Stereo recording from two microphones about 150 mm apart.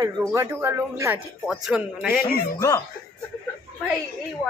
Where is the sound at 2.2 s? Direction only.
90° left.